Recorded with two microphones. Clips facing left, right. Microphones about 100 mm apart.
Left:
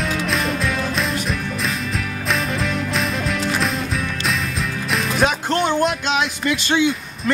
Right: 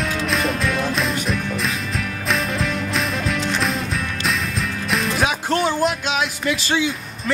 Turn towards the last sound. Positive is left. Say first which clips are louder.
# left 4 dB
turn(degrees=0)  # may be behind; listen again after turning